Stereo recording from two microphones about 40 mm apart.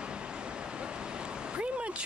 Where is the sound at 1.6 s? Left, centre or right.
Right.